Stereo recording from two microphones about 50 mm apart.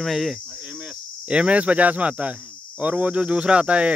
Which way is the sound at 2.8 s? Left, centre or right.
Right.